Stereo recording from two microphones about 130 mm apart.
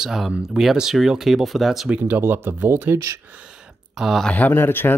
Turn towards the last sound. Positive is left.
turn(degrees=15)  # may be behind; listen again after turning